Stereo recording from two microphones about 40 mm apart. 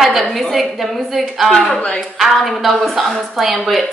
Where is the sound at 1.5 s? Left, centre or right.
Centre.